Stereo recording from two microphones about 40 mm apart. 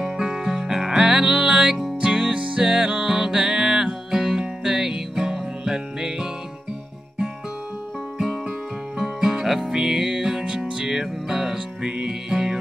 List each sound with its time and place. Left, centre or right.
0.0 s music: centre
2.3 s music: right
2.6 s music: centre
8.9 s music: centre
11.5 s music: centre